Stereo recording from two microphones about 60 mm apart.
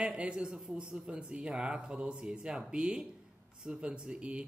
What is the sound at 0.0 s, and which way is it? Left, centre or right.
Speech, centre.